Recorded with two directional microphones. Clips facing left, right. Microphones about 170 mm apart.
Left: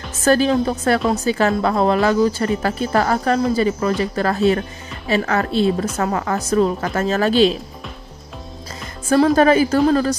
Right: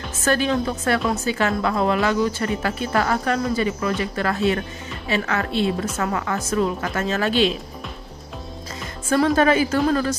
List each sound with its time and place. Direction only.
0.2 s a woman's voice: 35° left (ahead or behind)
9.1 s a woman's voice: 35° left (ahead or behind)